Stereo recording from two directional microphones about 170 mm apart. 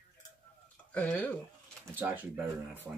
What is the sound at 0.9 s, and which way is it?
Speech, 5° left (ahead or behind).